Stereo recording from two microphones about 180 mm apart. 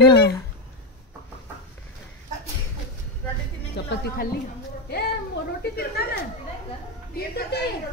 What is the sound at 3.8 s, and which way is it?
Music, 70° left (ahead or behind).